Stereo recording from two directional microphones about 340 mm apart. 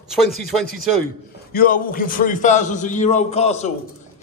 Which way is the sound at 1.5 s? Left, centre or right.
Left.